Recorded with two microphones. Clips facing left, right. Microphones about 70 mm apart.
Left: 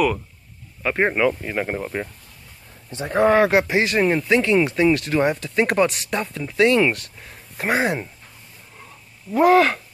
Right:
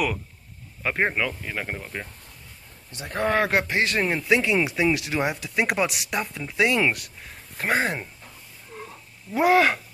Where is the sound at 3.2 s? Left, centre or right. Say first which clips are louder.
Left 6 dB; centre.